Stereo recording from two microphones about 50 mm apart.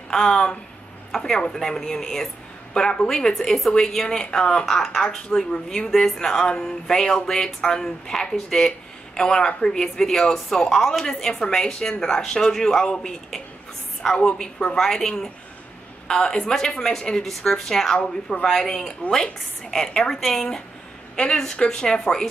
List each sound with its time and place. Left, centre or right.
0.1 s a woman's voice: centre
2.7 s a woman's voice: centre